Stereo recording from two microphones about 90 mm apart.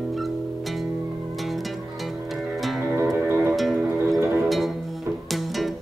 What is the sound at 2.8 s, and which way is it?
Music, 25° right (ahead or behind).